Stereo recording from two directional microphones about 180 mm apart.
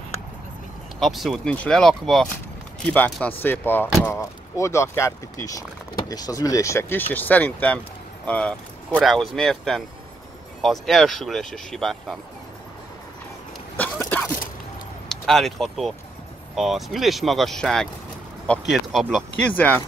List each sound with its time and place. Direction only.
0.9 s speech: centre (ahead or behind)
13.7 s a sound: 10° left (ahead or behind)
15.0 s speech: centre (ahead or behind)